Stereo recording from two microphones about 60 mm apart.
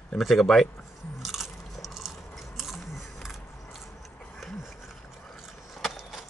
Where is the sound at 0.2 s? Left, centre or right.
Centre.